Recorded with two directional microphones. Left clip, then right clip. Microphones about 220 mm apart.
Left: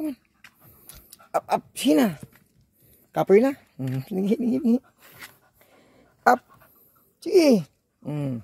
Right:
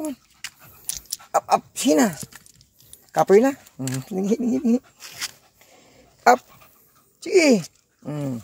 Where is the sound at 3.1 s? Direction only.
15° left (ahead or behind).